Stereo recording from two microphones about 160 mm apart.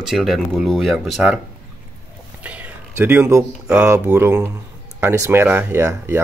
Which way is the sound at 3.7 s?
10° right (ahead or behind).